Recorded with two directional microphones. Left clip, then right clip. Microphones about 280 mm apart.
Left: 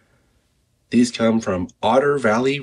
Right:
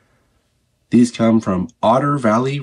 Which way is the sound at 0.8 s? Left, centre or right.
Centre.